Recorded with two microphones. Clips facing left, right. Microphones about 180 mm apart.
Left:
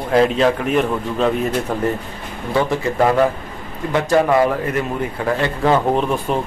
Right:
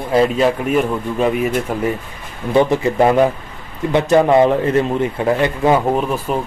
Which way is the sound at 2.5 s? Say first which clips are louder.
Right 5 dB; 20° right (ahead or behind).